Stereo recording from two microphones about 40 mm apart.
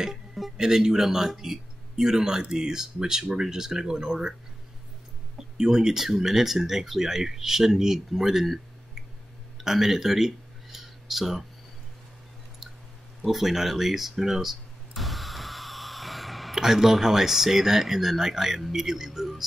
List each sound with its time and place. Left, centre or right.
0.0 s music: centre
0.6 s a man's voice: centre
5.6 s speech: centre
9.6 s a sound: centre
13.2 s a sound: centre
16.5 s speech: centre